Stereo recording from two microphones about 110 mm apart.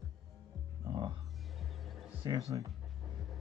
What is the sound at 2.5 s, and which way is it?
Speech, 30° right (ahead or behind).